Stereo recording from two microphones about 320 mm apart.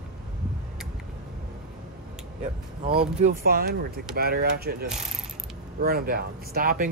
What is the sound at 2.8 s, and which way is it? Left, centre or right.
Speech, centre.